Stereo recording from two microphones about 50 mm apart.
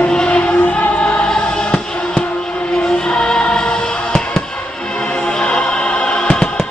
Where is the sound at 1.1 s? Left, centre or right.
Left.